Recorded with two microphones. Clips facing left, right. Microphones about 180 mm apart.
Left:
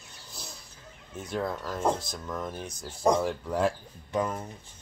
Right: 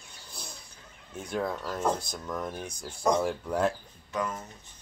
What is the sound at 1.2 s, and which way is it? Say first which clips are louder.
Speech: even; centre (ahead or behind).